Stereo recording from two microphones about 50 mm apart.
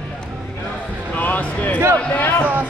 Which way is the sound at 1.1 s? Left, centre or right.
Left.